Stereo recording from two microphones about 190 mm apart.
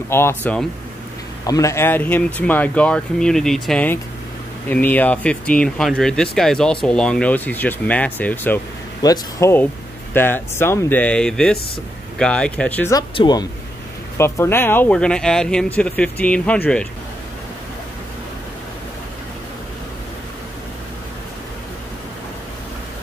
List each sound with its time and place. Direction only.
0.1 s speech: 10° left (ahead or behind)
12.9 s speech: 25° left (ahead or behind)